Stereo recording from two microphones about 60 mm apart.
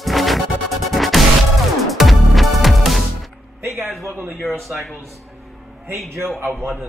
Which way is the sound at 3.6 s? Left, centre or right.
Right.